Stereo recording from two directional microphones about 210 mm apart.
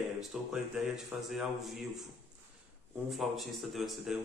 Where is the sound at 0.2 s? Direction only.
Centre (ahead or behind).